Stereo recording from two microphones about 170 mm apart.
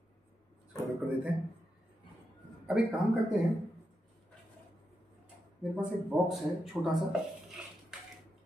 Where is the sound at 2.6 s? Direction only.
5° right (ahead or behind).